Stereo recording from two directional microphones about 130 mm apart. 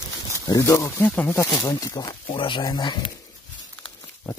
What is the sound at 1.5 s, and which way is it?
Speech, 30° left (ahead or behind).